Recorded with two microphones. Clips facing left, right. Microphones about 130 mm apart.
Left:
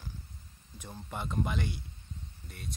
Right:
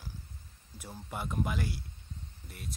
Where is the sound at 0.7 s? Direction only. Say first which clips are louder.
Even; 10° right (ahead or behind).